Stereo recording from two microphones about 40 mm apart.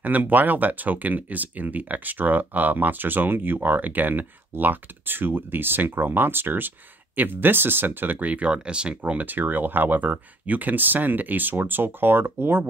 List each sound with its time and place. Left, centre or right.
0.0 s speech: right
8.5 s speech: right
9.2 s speech: right